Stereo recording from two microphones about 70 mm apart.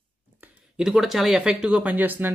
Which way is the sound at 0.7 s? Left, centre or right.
Centre.